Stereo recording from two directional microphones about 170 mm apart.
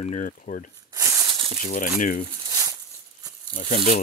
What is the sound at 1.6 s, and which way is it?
Speech, 50° left (ahead or behind).